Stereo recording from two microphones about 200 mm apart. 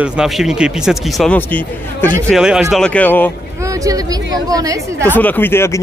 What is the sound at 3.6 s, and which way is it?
Speech, 15° right (ahead or behind).